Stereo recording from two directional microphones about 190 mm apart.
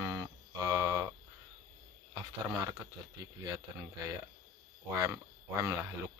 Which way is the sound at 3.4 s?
20° right (ahead or behind).